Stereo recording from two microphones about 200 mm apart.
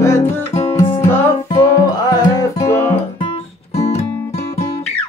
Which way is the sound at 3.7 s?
30° left (ahead or behind).